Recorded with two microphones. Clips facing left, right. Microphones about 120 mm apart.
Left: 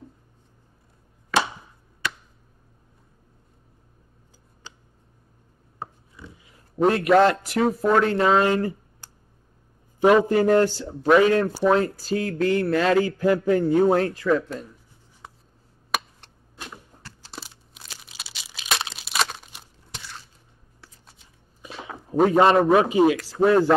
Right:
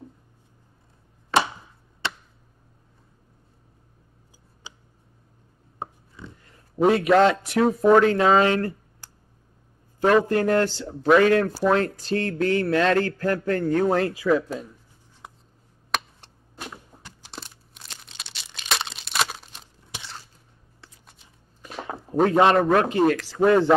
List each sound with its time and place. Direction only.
2.0 s a sound: 30° right (ahead or behind)
4.6 s a sound: 10° right (ahead or behind)
6.2 s a man's voice: 5° left (ahead or behind)
10.7 s speech: 5° left (ahead or behind)
13.8 s speech: centre (ahead or behind)
17.3 s crumpling: centre (ahead or behind)
22.1 s speech: centre (ahead or behind)